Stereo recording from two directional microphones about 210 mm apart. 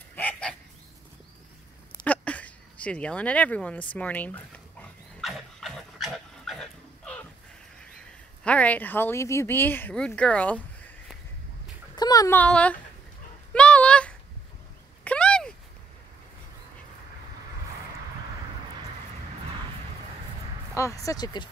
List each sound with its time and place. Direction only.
0.1 s fowl: 5° left (ahead or behind)
2.0 s speech: 5° left (ahead or behind)
5.1 s dog: centre (ahead or behind)
8.5 s speech: 5° left (ahead or behind)
11.9 s speech: 20° left (ahead or behind)
13.5 s a sound: 5° left (ahead or behind)
20.7 s speech: 15° left (ahead or behind)